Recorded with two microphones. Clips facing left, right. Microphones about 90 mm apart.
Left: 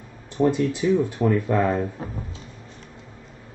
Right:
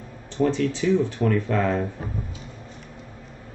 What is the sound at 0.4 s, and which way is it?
Speech, 15° left (ahead or behind).